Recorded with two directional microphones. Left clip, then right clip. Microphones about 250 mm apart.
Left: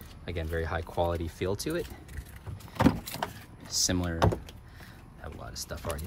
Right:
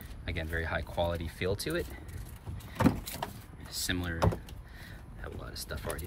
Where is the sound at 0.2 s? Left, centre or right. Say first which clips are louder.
Left 2 dB; centre.